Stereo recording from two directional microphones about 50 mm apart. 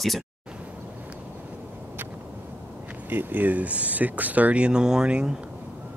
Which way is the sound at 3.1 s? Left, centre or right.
Right.